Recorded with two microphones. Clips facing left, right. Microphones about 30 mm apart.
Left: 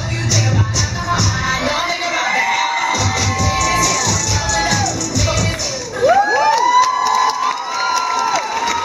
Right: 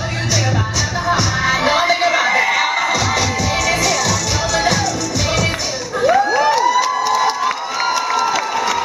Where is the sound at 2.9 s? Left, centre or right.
Right.